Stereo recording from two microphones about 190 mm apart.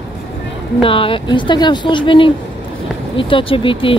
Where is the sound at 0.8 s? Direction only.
30° left (ahead or behind).